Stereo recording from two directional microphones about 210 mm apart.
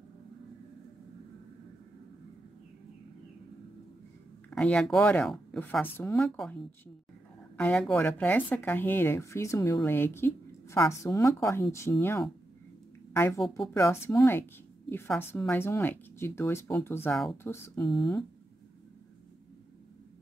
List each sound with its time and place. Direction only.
4.5 s a woman's voice: 5° left (ahead or behind)
17.4 s a woman's voice: 10° left (ahead or behind)
17.8 s speech: centre (ahead or behind)